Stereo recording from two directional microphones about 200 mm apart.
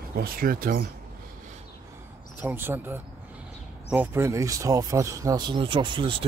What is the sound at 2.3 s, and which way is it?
Speech, 10° right (ahead or behind).